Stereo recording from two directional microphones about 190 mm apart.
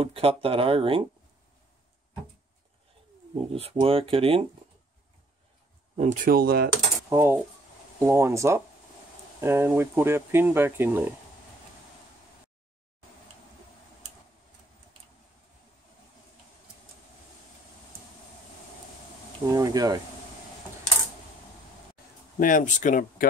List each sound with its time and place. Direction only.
0.0 s speech: 30° right (ahead or behind)
3.3 s speech: 30° right (ahead or behind)
5.9 s speech: 40° right (ahead or behind)
7.1 s speech: 15° right (ahead or behind)
19.5 s speech: 20° right (ahead or behind)
22.4 s speech: 45° left (ahead or behind)